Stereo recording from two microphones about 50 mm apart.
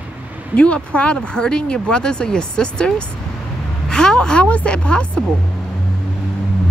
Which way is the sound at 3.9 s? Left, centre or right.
Centre.